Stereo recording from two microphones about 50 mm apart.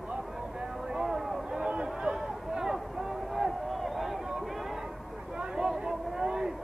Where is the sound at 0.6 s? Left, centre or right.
Centre.